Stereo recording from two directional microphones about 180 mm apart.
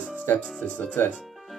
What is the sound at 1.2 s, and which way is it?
Music, centre (ahead or behind).